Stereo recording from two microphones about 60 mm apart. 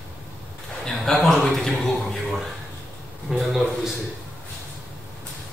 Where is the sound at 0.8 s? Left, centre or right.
Centre.